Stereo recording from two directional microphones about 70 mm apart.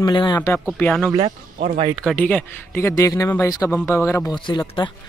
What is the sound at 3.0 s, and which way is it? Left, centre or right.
Speech, left.